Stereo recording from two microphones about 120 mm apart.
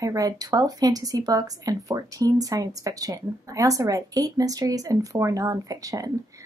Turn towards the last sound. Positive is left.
turn(degrees=-30)  # may be behind; listen again after turning